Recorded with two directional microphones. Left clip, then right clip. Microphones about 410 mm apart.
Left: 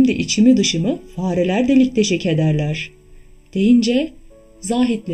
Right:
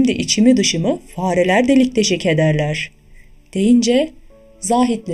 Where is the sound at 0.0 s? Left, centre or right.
Centre.